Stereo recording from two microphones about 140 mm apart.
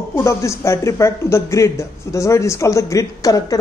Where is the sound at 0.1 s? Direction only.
20° left (ahead or behind).